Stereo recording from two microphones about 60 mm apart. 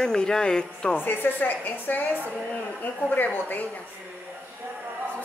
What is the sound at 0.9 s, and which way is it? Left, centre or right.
Speech, left.